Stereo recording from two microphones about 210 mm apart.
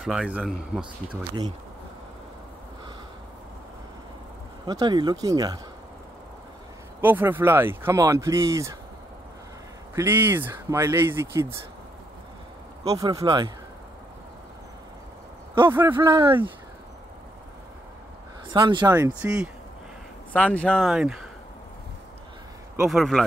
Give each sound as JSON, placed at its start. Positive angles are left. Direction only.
{"t": 0.0, "sound": "speech", "side_deg": -5}
{"t": 4.6, "sound": "speech", "side_deg": -20}
{"t": 7.0, "sound": "speech", "side_deg": -10}
{"t": 9.9, "sound": "speech", "side_deg": -10}
{"t": 12.8, "sound": "speech", "side_deg": -15}
{"t": 15.6, "sound": "speech", "side_deg": -10}
{"t": 18.5, "sound": "speech", "side_deg": -20}
{"t": 20.3, "sound": "speech", "side_deg": 5}
{"t": 22.8, "sound": "speech", "side_deg": 0}